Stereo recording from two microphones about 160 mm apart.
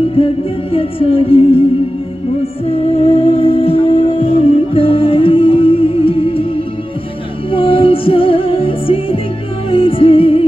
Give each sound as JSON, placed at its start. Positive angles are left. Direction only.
{"t": 0.0, "sound": "music", "side_deg": 35}
{"t": 2.6, "sound": "music", "side_deg": 35}